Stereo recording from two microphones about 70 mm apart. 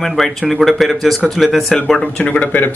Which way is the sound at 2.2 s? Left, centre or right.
Centre.